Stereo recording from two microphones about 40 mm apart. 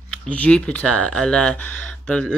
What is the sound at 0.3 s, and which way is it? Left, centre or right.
Speech, left.